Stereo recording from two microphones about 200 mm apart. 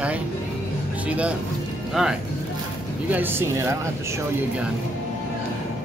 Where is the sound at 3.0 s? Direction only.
10° right (ahead or behind).